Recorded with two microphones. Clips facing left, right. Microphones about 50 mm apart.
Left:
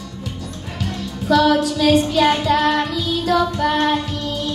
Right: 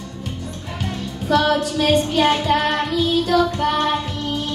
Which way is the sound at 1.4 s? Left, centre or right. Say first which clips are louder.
Left 3 dB; centre.